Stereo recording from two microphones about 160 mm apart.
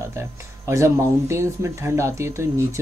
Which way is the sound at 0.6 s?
15° right (ahead or behind).